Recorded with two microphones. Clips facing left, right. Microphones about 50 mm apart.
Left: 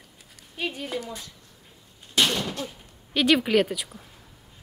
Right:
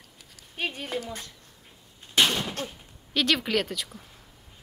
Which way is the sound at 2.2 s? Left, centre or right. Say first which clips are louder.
Even; right.